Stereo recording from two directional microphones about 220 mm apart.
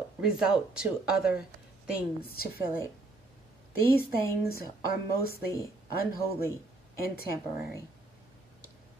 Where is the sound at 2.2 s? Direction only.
45° left (ahead or behind).